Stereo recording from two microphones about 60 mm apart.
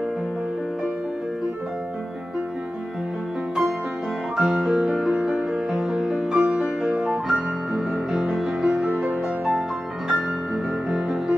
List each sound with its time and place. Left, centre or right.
4.4 s music: centre
8.8 s music: right
10.0 s music: centre